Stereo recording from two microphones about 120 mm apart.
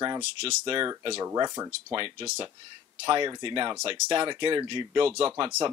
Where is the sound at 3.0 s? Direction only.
35° right (ahead or behind).